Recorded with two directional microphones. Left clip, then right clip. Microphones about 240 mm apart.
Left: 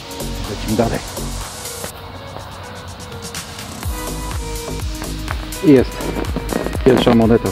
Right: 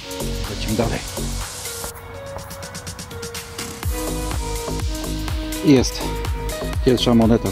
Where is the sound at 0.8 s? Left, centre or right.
Centre.